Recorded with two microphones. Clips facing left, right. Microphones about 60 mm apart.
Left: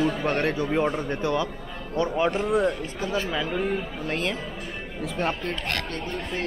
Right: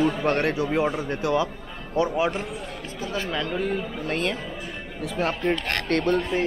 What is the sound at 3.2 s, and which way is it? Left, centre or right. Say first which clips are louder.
Speech: even; centre.